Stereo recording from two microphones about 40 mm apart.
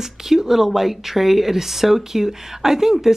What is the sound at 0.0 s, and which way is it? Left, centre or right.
Speech, centre.